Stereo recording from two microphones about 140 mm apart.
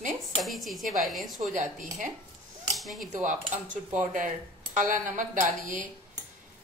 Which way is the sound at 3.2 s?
65° right (ahead or behind).